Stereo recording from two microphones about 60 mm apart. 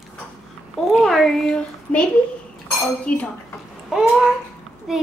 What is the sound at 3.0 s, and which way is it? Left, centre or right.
Dishes, left.